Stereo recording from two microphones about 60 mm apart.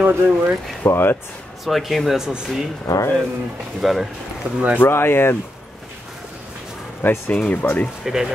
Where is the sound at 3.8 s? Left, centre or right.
Centre.